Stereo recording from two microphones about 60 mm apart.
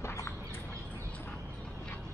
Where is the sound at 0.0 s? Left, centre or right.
Left.